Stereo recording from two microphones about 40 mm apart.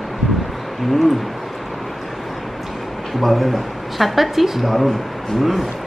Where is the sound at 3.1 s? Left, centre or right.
Centre.